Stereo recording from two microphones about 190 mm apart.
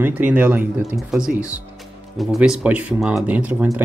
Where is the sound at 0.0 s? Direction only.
10° right (ahead or behind).